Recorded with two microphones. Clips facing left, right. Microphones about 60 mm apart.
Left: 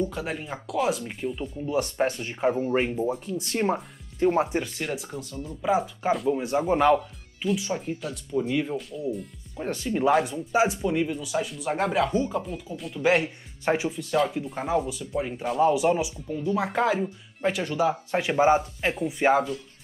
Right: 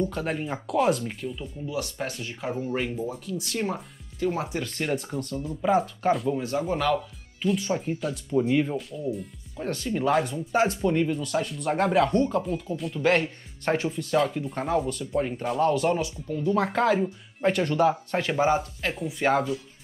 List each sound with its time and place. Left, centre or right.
0.0 s speech: centre
1.7 s speech: left
4.6 s speech: centre
6.3 s speech: left
7.0 s speech: centre
9.6 s speech: centre
15.6 s speech: centre
18.2 s speech: centre